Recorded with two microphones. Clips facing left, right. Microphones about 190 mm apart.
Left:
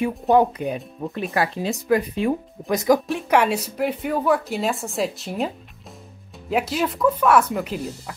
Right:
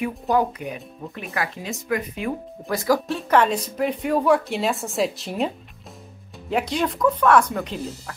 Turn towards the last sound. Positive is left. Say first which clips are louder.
# even
turn(degrees=5)  # may be behind; listen again after turning